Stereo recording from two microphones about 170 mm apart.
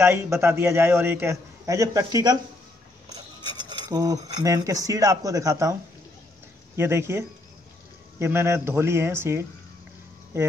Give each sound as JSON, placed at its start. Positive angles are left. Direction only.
{"t": 0.0, "sound": "a man's voice", "side_deg": -15}
{"t": 6.8, "sound": "a man's voice", "side_deg": -15}